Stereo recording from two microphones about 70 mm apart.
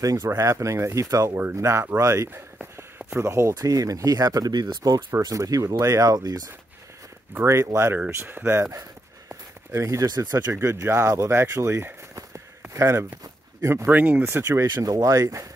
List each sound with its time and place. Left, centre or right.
0.0 s speech: right
5.2 s speech: right
7.4 s speech: right
9.3 s a sound: right
10.5 s speech: right
13.8 s speech: right
14.2 s speech: right
14.8 s speech: right